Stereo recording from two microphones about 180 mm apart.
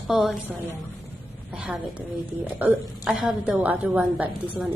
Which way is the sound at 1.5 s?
5° right (ahead or behind).